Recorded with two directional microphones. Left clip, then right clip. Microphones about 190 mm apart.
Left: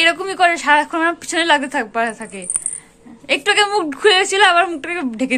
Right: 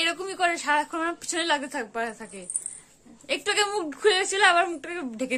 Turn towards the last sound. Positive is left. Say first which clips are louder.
# left 10 dB
turn(degrees=-5)  # may be behind; listen again after turning